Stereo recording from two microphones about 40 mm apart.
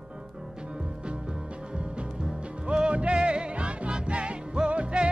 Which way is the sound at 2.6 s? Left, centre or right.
Right.